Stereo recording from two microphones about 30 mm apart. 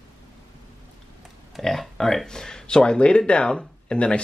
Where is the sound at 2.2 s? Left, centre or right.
Left.